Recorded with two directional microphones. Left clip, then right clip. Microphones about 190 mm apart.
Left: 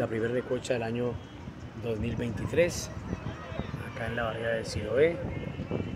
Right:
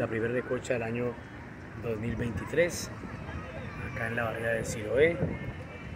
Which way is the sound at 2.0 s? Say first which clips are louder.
Left 1 dB; 15° left (ahead or behind).